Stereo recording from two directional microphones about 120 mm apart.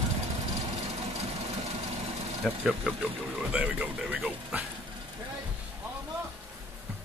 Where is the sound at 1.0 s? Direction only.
65° right (ahead or behind).